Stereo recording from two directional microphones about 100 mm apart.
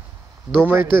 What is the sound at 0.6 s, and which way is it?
Speech, 20° right (ahead or behind).